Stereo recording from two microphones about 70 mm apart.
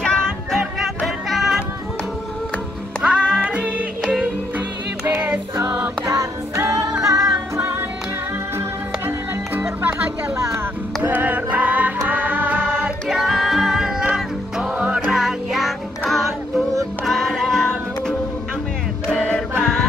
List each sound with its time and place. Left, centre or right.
0.0 s music: centre
0.6 s music: centre
3.0 s music: centre; by 5.9 s right
6.0 s music: right
9.6 s music: right
10.3 s music: right
11.1 s music: right; by 18.1 s centre
19.6 s music: centre